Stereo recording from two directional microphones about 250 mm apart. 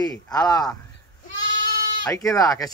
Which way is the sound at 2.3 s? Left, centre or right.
Centre.